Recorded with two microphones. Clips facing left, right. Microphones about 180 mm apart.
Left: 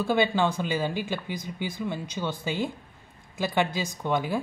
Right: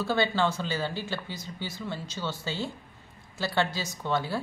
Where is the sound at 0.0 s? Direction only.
15° left (ahead or behind).